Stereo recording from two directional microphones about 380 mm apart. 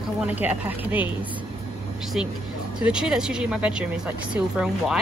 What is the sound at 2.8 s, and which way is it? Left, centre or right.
Speech, centre.